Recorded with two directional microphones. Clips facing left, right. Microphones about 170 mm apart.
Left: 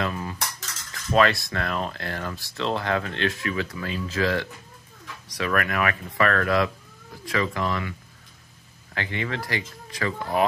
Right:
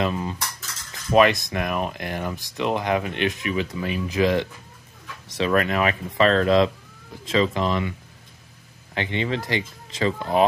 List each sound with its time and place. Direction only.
0.0 s speech: 20° right (ahead or behind)
8.9 s speech: 20° right (ahead or behind)